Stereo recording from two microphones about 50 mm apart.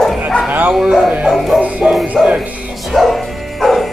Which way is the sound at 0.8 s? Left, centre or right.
Centre.